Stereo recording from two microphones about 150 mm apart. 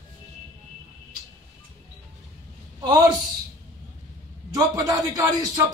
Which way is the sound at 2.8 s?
25° right (ahead or behind).